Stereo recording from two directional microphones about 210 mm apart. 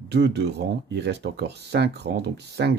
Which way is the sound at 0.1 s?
50° right (ahead or behind).